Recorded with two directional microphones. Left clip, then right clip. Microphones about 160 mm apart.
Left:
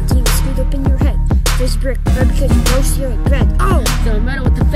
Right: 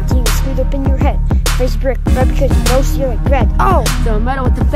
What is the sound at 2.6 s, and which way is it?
Music, centre (ahead or behind).